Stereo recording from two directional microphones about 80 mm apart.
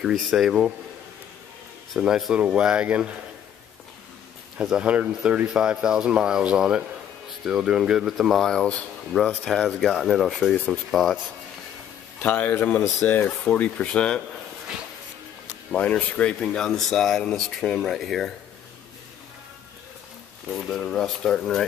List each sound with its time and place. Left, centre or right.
0.1 s speech: centre
2.0 s speech: centre
4.6 s speech: centre
8.3 s speech: centre
12.2 s a man's voice: left
15.7 s speech: centre
20.6 s speech: centre